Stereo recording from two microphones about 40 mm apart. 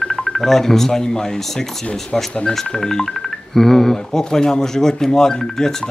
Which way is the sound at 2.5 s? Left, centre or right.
Centre.